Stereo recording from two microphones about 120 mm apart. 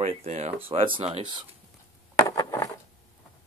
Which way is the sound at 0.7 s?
50° right (ahead or behind).